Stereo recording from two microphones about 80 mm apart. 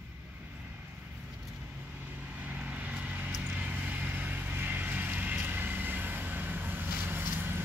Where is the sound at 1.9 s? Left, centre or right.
Right.